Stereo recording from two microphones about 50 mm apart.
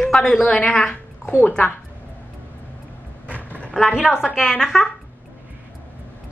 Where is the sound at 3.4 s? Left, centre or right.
Left.